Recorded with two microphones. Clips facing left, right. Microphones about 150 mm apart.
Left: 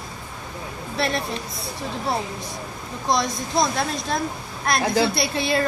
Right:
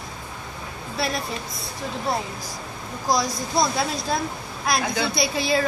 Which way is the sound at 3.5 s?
5° right (ahead or behind).